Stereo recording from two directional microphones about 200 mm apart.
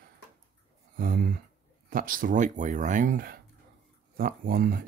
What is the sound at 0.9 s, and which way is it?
Speech, 45° right (ahead or behind).